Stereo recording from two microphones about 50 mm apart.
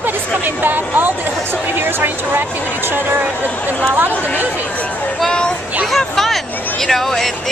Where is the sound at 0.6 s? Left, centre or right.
Right.